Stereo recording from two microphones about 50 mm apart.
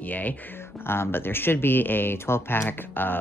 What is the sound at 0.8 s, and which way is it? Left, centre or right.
Speech, left.